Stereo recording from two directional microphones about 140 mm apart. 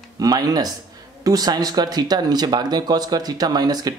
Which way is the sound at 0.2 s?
25° right (ahead or behind).